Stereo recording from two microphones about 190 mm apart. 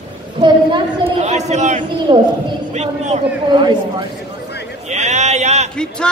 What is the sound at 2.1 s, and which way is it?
A man's voice, 25° right (ahead or behind).